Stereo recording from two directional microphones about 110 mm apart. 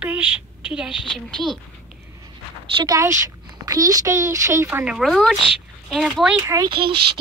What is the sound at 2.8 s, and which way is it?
Speech, 30° right (ahead or behind).